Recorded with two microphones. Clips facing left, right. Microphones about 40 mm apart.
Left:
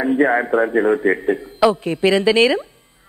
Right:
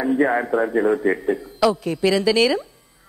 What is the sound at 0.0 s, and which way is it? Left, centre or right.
A man's voice, left.